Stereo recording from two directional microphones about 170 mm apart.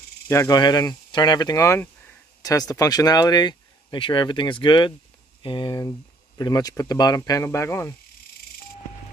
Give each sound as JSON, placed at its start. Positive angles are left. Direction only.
{"t": 0.3, "sound": "speech", "side_deg": 20}